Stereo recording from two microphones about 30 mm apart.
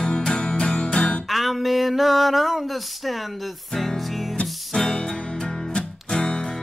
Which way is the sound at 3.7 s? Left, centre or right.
Centre.